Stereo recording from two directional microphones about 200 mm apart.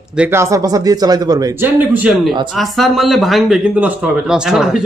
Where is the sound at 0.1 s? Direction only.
10° right (ahead or behind).